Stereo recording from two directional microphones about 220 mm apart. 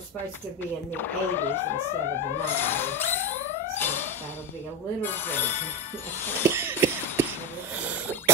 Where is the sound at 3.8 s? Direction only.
10° left (ahead or behind).